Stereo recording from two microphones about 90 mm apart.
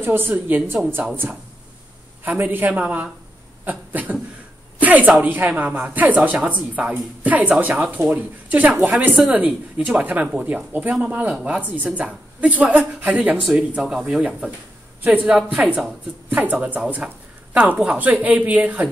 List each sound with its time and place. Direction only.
0.0 s a woman's voice: 25° right (ahead or behind)
2.2 s a man's voice: 20° right (ahead or behind)
3.6 s a sound: 20° right (ahead or behind)
5.2 s speech: 20° right (ahead or behind)